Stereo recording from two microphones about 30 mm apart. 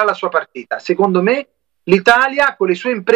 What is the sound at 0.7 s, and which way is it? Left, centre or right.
Speech, left.